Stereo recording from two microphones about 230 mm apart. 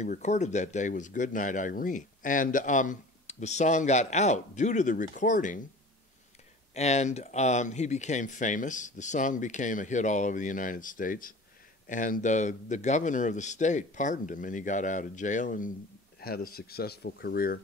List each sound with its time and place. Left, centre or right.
0.0 s speech: left
6.7 s speech: left